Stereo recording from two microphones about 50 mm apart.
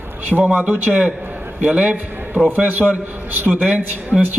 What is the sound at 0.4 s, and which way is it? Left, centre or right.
A man's voice, right.